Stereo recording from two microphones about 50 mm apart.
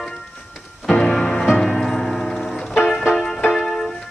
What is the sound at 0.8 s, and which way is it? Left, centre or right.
Music, centre.